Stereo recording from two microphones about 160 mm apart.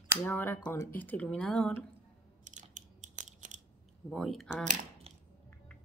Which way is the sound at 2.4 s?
50° right (ahead or behind).